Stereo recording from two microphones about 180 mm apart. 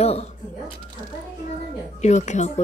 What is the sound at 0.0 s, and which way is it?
Speech, 35° left (ahead or behind).